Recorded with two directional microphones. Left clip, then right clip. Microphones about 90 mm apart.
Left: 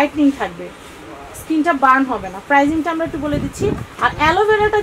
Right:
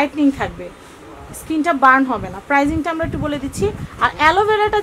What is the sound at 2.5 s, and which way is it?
Speech, 55° right (ahead or behind).